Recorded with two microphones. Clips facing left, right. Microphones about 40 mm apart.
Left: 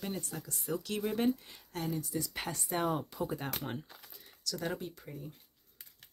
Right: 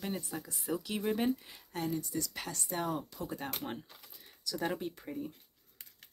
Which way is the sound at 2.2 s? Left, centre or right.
Centre.